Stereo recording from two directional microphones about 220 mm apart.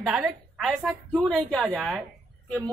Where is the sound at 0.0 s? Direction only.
5° right (ahead or behind).